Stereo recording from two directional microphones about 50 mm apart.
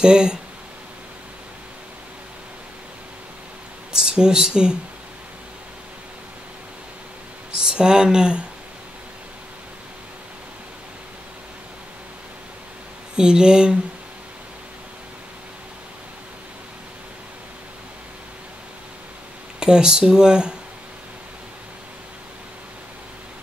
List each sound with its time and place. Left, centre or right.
0.0 s speech: centre
3.9 s speech: centre
7.5 s speech: centre
13.1 s speech: centre
19.6 s speech: centre